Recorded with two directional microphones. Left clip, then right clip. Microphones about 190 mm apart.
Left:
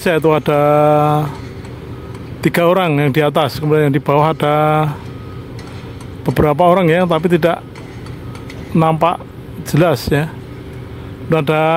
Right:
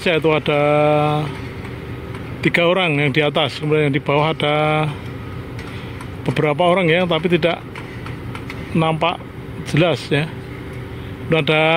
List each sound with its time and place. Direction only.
0.0 s speech: 20° left (ahead or behind)
2.4 s speech: 20° left (ahead or behind)
6.2 s speech: 20° left (ahead or behind)
8.7 s speech: 20° left (ahead or behind)